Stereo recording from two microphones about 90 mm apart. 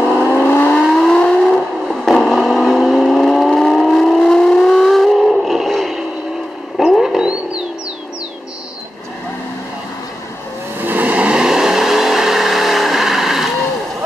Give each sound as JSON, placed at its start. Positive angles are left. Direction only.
{"t": 0.3, "sound": "vehicle", "side_deg": 20}
{"t": 0.8, "sound": "vehicle", "side_deg": 5}
{"t": 6.8, "sound": "wild animals", "side_deg": 0}
{"t": 10.8, "sound": "vehicle", "side_deg": -20}